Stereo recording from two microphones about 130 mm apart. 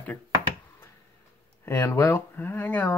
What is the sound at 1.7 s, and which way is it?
Speech, 20° left (ahead or behind).